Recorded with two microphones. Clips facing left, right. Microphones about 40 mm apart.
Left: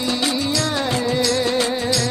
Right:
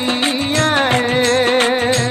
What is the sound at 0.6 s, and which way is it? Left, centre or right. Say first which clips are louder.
Music: right 7 dB; right.